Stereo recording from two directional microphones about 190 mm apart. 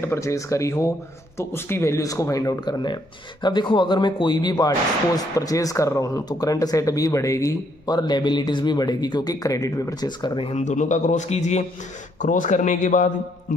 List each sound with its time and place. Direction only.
0.0 s a man's voice: 15° left (ahead or behind); by 13.1 s 40° left (ahead or behind)